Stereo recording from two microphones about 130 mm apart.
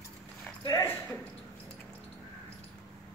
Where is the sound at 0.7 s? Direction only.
25° left (ahead or behind).